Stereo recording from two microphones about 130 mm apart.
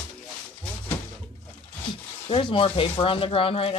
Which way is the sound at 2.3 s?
40° left (ahead or behind).